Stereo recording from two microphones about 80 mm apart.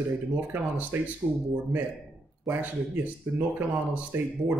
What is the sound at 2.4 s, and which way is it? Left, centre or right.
Speech, right.